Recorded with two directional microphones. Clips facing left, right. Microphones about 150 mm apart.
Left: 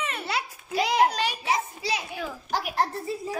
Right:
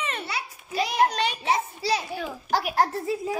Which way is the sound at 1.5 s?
30° right (ahead or behind).